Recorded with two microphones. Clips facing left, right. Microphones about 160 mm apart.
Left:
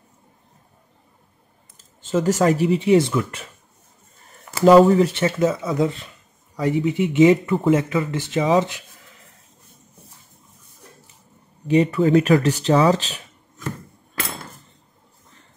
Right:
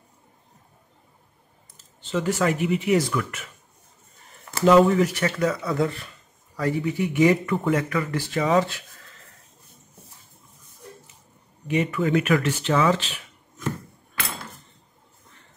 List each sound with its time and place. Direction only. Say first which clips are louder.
2.0 s speech: left 5 dB; 45° left (ahead or behind); by 3.4 s 30° left (ahead or behind)
4.6 s speech: left 4 dB; 35° left (ahead or behind); by 9.2 s 15° left (ahead or behind)
11.6 s speech: left 6 dB; 35° left (ahead or behind)